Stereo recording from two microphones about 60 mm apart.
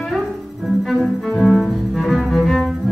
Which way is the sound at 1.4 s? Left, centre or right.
Centre.